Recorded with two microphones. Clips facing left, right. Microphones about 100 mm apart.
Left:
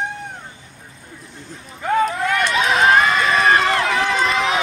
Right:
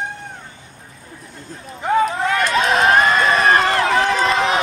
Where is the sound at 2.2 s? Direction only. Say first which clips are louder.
Right 1 dB; 35° right (ahead or behind).